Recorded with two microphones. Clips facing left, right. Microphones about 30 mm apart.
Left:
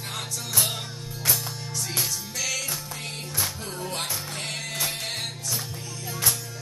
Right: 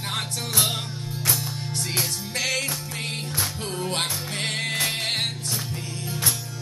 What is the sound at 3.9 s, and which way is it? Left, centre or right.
Music, right.